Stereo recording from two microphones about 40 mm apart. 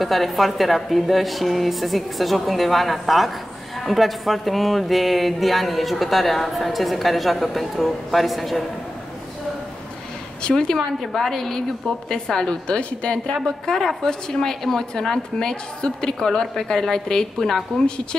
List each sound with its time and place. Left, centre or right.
0.0 s speech: centre
10.5 s a woman's voice: centre
12.6 s a woman's voice: left
13.3 s a woman's voice: centre